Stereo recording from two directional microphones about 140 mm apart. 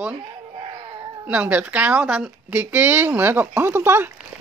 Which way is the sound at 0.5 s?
40° right (ahead or behind).